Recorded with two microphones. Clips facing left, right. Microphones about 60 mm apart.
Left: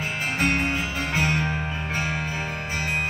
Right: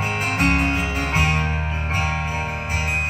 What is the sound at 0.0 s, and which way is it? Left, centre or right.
Music, right.